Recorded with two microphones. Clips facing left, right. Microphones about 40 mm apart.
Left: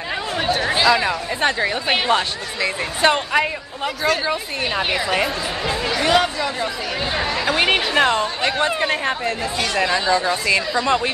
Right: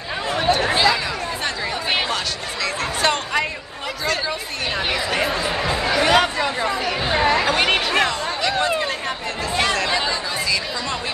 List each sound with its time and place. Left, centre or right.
0.4 s chatter: centre
1.0 s speech: left; by 5.3 s centre
5.7 s music: right
6.4 s speech: centre
7.4 s speech: centre
8.1 s speech: left
10.1 s a woman's voice: left